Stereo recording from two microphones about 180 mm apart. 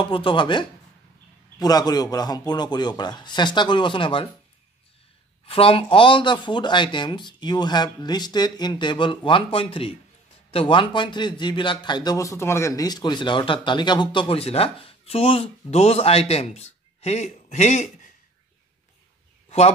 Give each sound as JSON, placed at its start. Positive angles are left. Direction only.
{"t": 0.0, "sound": "a man's voice", "side_deg": 30}
{"t": 5.4, "sound": "a man's voice", "side_deg": 30}